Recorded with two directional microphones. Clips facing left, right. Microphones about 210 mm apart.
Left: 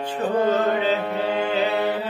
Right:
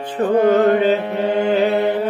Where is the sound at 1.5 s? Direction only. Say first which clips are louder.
Right 6 dB; 50° right (ahead or behind).